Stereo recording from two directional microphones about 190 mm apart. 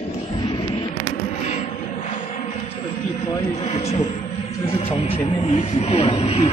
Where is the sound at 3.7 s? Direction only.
30° left (ahead or behind).